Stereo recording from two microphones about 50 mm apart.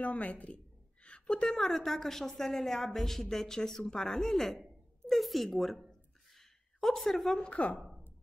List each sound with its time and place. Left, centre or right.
0.0 s a woman's voice: left
1.0 s a sound: left
1.5 s a woman's voice: centre
7.4 s a woman's voice: left